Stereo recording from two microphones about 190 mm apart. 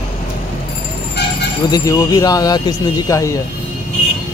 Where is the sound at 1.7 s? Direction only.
15° left (ahead or behind).